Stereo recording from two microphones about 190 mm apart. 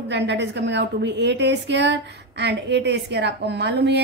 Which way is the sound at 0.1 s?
65° right (ahead or behind).